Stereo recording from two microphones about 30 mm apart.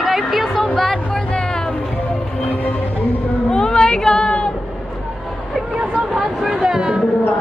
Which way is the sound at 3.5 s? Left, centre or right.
Left.